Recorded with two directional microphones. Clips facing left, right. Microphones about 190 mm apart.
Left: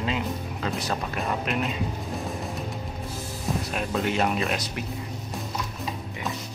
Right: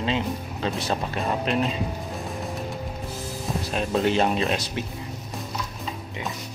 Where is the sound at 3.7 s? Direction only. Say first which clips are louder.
Right 6 dB; 30° right (ahead or behind).